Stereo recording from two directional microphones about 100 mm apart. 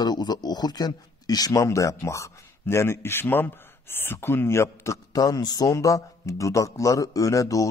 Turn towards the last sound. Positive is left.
turn(degrees=35)  # may be behind; listen again after turning